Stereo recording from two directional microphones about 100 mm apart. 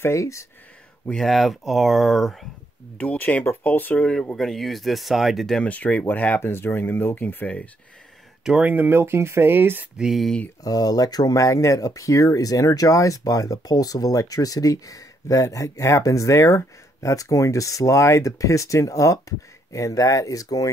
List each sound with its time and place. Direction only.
0.0 s speech: 30° left (ahead or behind)
1.0 s speech: 5° left (ahead or behind)
3.0 s speech: 15° left (ahead or behind)
5.7 s speech: 15° left (ahead or behind)
8.5 s speech: 15° right (ahead or behind)
9.9 s speech: 5° right (ahead or behind)
10.6 s speech: 40° left (ahead or behind)